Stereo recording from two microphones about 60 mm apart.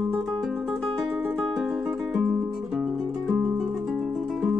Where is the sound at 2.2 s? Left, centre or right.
Centre.